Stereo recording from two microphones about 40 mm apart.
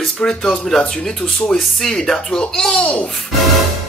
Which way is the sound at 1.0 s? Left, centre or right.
Centre.